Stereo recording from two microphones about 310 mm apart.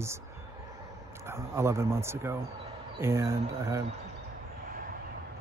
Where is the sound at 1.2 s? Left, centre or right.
Centre.